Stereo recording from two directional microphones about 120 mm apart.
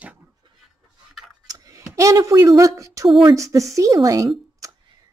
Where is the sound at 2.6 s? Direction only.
25° right (ahead or behind).